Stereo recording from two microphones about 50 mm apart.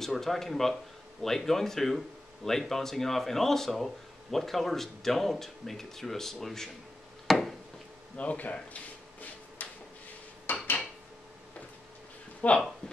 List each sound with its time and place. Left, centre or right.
0.0 s speech: centre
7.2 s a sound: centre
8.2 s speech: left
9.6 s a sound: left
10.5 s dishes: left
12.4 s speech: left